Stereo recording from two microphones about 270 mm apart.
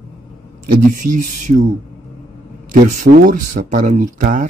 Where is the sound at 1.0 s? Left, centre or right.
Right.